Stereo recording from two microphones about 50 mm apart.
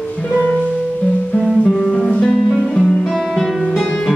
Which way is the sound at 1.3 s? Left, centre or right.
Centre.